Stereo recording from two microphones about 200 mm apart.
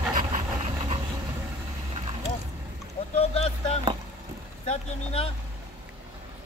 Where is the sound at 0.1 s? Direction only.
40° right (ahead or behind).